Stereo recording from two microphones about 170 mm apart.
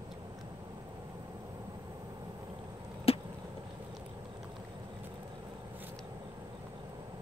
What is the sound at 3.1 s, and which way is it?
Chop, 35° left (ahead or behind).